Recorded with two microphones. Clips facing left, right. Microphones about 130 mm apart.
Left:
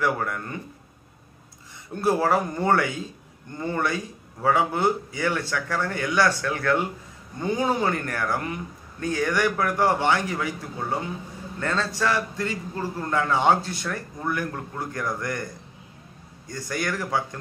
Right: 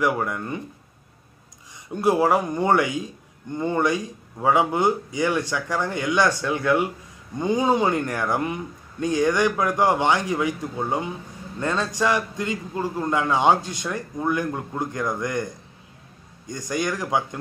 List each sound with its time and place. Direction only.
0.0 s a man's voice: 15° right (ahead or behind)
2.0 s a man's voice: 15° right (ahead or behind)